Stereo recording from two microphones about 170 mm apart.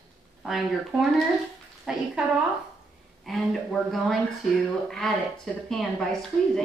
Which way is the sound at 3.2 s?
Centre (ahead or behind).